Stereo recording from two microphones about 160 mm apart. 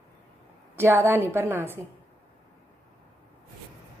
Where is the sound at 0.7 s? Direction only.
15° right (ahead or behind).